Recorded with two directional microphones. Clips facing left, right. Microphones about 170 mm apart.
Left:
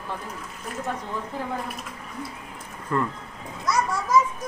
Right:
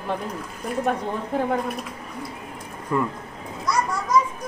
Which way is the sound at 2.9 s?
10° right (ahead or behind).